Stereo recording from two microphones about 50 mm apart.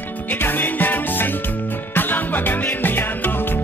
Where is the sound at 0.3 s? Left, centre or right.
Left.